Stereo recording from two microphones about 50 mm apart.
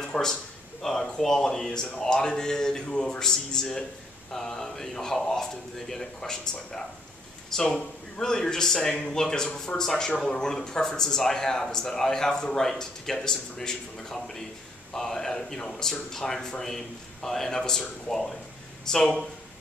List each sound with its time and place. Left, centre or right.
0.0 s a sound: centre
0.8 s a man's voice: centre
18.9 s a man's voice: centre